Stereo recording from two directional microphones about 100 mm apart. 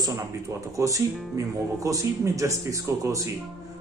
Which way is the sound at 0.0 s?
35° right (ahead or behind).